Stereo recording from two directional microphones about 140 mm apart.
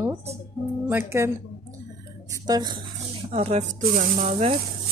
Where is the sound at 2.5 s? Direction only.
30° right (ahead or behind).